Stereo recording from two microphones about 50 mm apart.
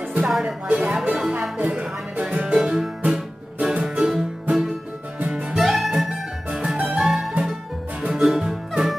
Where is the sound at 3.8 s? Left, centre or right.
Centre.